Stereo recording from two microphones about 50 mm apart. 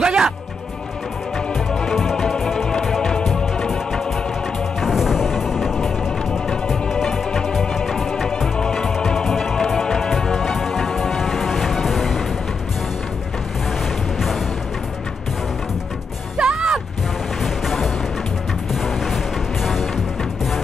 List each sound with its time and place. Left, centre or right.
0.0 s music: centre
1.7 s music: centre
4.7 s music: centre
6.7 s music: centre
16.3 s music: centre
17.4 s music: centre
19.6 s music: centre